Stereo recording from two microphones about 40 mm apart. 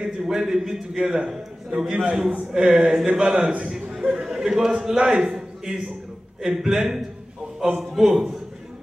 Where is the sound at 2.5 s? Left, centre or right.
Centre.